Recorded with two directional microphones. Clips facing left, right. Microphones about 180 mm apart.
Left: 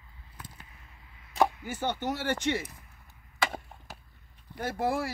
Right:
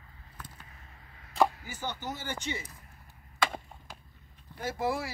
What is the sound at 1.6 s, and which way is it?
Speech, 60° left (ahead or behind).